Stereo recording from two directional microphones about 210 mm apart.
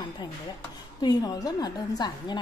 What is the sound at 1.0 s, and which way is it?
A woman's voice, 20° left (ahead or behind).